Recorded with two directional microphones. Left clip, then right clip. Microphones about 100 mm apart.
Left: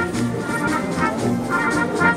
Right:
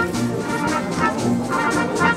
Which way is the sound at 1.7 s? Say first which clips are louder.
Left 1 dB; 35° right (ahead or behind).